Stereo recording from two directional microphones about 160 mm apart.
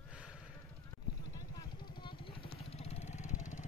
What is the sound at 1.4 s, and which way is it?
Vehicle, 25° left (ahead or behind).